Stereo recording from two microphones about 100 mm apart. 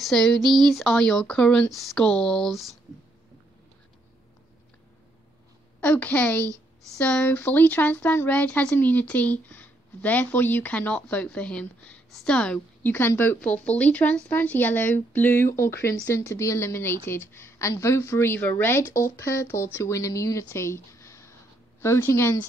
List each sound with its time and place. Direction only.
0.0 s speech: 5° left (ahead or behind)
1.7 s speech: centre (ahead or behind)
5.8 s speech: 20° left (ahead or behind)